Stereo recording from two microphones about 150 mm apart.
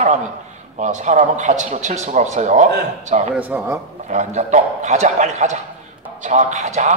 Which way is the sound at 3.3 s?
10° right (ahead or behind).